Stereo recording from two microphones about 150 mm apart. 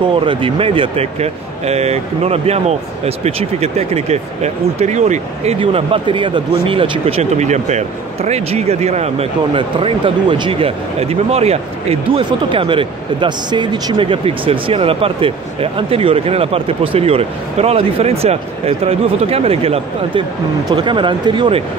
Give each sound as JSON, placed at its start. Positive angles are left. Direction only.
{"t": 0.2, "sound": "speech", "side_deg": -35}